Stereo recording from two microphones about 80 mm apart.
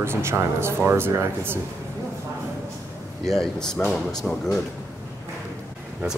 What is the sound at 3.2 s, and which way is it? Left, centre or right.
Speech, centre.